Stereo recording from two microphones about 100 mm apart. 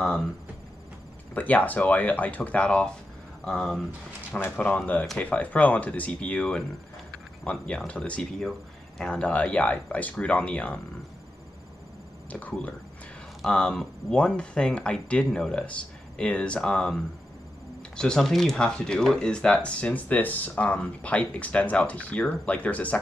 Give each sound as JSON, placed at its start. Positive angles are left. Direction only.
{"t": 1.3, "sound": "speech", "side_deg": 15}
{"t": 4.4, "sound": "speech", "side_deg": 20}
{"t": 12.3, "sound": "speech", "side_deg": 15}